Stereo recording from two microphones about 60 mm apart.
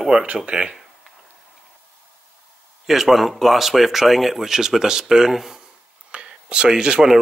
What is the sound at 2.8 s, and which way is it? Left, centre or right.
Speech, centre.